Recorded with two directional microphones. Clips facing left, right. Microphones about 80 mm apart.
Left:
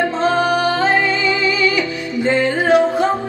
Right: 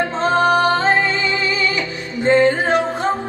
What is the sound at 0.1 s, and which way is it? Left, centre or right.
Music, right.